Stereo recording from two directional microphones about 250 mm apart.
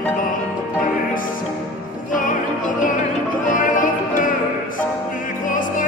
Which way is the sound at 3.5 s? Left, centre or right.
Left.